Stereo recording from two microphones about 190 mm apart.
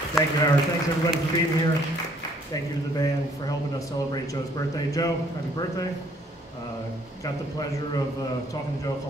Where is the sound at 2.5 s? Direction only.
20° left (ahead or behind).